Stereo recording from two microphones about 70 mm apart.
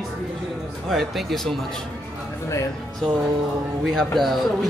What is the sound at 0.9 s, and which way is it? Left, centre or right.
Speech, centre.